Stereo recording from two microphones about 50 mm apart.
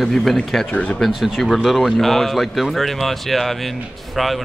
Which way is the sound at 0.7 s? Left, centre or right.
Left.